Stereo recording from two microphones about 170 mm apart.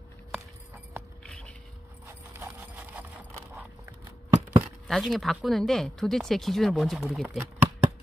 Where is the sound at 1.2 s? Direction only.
5° left (ahead or behind).